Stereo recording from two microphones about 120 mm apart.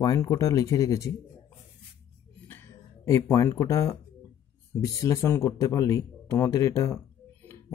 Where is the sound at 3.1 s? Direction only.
25° left (ahead or behind).